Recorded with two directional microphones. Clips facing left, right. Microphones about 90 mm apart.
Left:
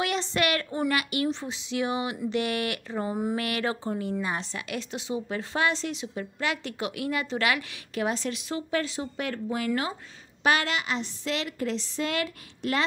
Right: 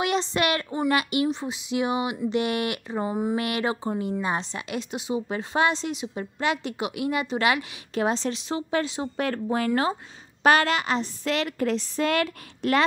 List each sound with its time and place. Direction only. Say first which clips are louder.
0.0 s a woman's voice: right 3 dB; 20° right (ahead or behind)
1.2 s a woman's voice: right 3 dB; 15° right (ahead or behind)
9.1 s a woman's voice: right 7 dB; 45° right (ahead or behind)